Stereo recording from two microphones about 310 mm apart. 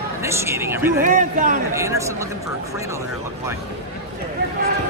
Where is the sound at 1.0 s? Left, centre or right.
Right.